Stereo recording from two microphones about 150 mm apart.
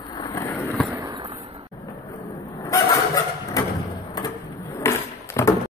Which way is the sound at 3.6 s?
25° left (ahead or behind).